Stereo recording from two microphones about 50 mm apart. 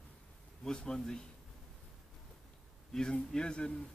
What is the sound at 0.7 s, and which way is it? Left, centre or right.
Speech, centre.